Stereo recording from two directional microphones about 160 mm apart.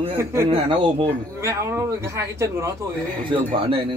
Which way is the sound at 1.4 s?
15° right (ahead or behind).